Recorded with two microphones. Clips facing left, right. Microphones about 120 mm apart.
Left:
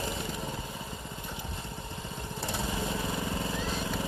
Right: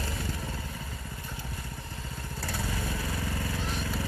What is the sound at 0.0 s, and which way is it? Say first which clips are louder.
Motorcycle: left 1 dB; 20° left (ahead or behind).